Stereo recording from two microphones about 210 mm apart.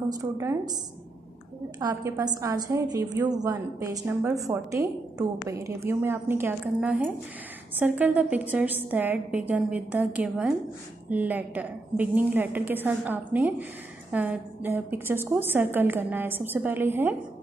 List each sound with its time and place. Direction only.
0.1 s a woman's voice: 15° right (ahead or behind)
1.8 s a woman's voice: 15° right (ahead or behind)